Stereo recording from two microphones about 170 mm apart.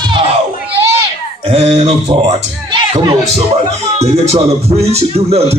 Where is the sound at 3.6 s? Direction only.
40° right (ahead or behind).